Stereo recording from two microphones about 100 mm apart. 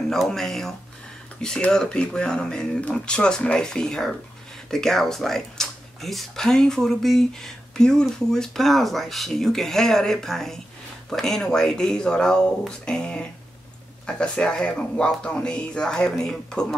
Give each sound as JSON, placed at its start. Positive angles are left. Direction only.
{"t": 0.1, "sound": "speech", "side_deg": 5}